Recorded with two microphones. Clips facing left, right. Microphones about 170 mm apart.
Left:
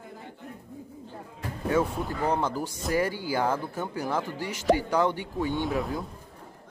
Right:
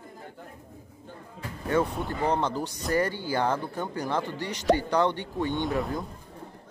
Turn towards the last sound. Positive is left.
turn(degrees=0)  # may be behind; listen again after turning